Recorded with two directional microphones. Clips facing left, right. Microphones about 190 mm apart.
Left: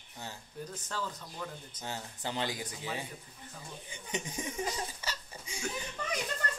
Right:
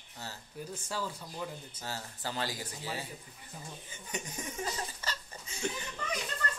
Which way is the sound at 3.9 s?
20° left (ahead or behind).